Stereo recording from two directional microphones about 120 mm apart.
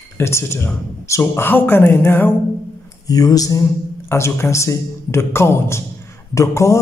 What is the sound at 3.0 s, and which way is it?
Speech, 30° left (ahead or behind).